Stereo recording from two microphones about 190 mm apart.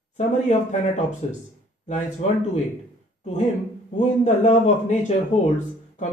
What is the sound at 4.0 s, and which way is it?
A man's voice, 40° left (ahead or behind).